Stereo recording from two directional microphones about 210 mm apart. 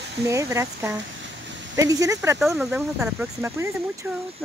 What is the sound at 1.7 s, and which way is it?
Speech, 15° right (ahead or behind).